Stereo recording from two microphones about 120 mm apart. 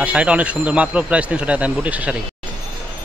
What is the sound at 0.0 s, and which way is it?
Speech, 10° right (ahead or behind).